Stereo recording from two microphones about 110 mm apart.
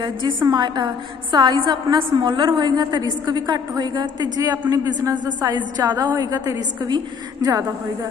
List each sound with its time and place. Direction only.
0.5 s a woman's voice: 40° right (ahead or behind)